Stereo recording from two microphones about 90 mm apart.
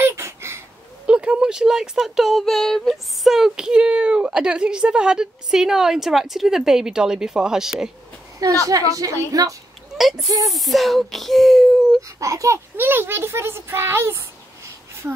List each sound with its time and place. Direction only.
0.0 s a sound: 30° right (ahead or behind)
1.0 s speech: 10° right (ahead or behind)
8.4 s a woman's voice: 40° right (ahead or behind)
9.9 s a sound: 5° right (ahead or behind)
10.4 s speech: centre (ahead or behind)
12.2 s a woman's voice: 40° right (ahead or behind)
12.7 s a child's voice: 25° right (ahead or behind)